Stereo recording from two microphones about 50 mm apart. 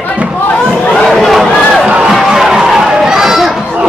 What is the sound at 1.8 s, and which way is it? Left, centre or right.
Crowd, centre.